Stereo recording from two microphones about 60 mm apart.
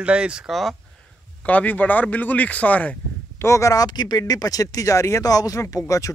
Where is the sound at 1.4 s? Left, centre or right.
Left.